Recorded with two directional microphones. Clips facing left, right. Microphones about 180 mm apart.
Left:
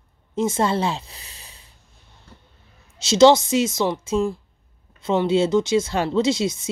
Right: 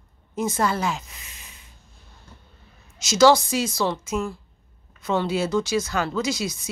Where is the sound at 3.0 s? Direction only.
25° left (ahead or behind).